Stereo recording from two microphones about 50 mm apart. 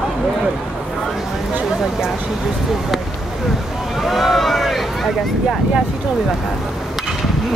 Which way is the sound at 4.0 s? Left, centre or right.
Centre.